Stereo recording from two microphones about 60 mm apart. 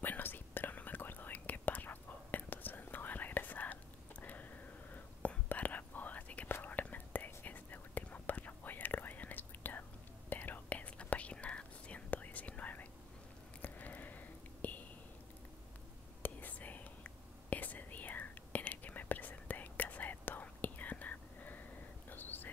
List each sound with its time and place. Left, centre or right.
0.0 s whispering: left
13.6 s a sound: left
16.2 s whispering: left